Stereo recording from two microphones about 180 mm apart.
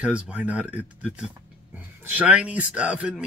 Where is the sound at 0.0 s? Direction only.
5° right (ahead or behind).